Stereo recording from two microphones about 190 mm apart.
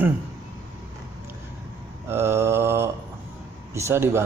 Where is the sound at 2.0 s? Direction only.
15° right (ahead or behind).